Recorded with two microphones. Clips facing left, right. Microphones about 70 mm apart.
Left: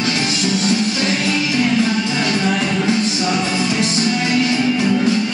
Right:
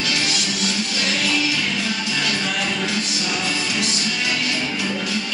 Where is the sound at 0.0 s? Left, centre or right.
Left.